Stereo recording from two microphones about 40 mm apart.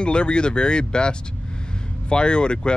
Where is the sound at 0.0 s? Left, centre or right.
Left.